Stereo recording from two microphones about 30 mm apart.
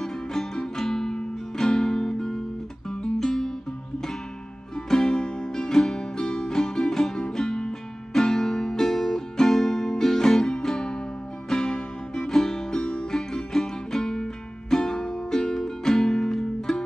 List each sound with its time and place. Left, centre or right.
0.0 s music: centre
4.8 s music: left